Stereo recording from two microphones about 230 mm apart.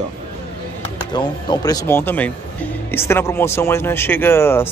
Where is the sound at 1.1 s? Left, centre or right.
Centre.